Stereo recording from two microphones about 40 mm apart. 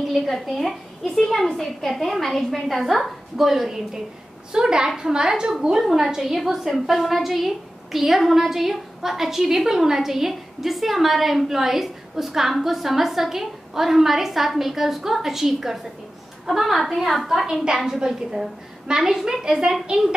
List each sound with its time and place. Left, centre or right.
0.3 s a woman's voice: centre
17.6 s a woman's voice: centre